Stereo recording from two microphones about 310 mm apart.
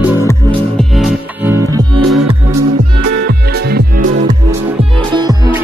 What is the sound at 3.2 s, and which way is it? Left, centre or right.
Music, right.